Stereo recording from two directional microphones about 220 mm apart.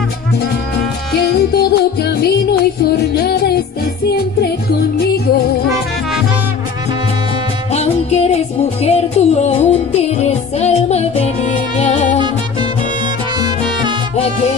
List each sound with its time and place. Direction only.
1.1 s music: 45° left (ahead or behind)
7.7 s music: 30° left (ahead or behind)